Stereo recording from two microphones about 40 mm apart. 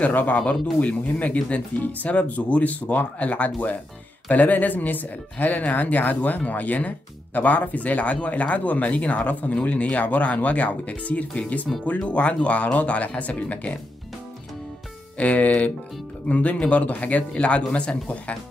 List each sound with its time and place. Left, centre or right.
0.1 s speech: left
15.1 s speech: left